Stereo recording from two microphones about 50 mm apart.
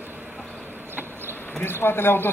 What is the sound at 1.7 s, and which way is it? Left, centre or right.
Speech, left.